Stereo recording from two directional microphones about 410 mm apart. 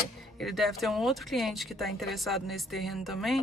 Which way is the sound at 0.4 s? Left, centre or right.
Centre.